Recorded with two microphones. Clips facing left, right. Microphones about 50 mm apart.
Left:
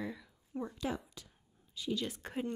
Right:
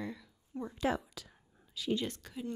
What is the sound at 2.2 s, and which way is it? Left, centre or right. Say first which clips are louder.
Speech: left 3 dB; left.